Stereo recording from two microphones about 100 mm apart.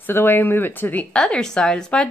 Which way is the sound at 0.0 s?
20° left (ahead or behind).